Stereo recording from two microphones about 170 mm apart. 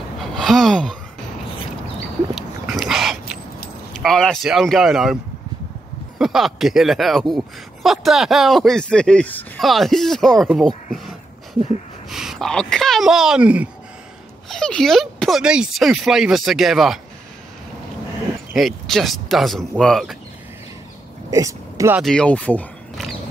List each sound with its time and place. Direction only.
0.2 s gasp: centre (ahead or behind)
2.3 s a sound: centre (ahead or behind)
3.9 s speech: centre (ahead or behind)
12.1 s speech: centre (ahead or behind)
14.5 s speech: 5° left (ahead or behind)
18.5 s speech: centre (ahead or behind)
21.3 s speech: 20° right (ahead or behind)
22.0 s speech: 5° left (ahead or behind)